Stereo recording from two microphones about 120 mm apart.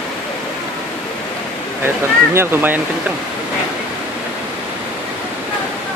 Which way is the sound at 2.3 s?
15° right (ahead or behind).